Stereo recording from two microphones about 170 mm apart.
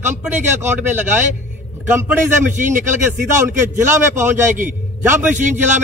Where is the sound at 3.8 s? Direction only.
15° right (ahead or behind).